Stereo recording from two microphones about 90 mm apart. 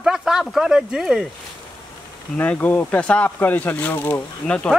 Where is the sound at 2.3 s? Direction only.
15° left (ahead or behind).